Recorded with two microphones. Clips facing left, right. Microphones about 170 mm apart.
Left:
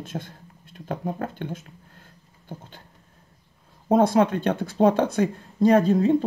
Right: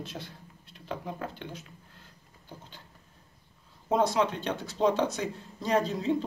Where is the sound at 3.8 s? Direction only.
50° left (ahead or behind).